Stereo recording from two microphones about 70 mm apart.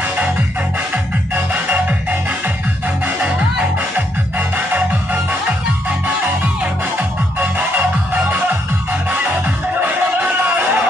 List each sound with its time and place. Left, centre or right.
1.3 s music: right
6.2 s music: right